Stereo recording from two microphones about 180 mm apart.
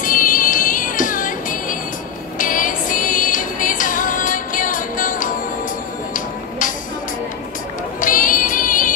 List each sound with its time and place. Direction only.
0.0 s music: 45° left (ahead or behind)
8.0 s music: 45° left (ahead or behind)